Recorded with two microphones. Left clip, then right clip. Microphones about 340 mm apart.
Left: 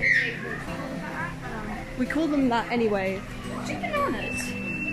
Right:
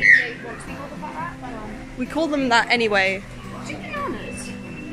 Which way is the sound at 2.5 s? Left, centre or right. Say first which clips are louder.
Right 7 dB; right.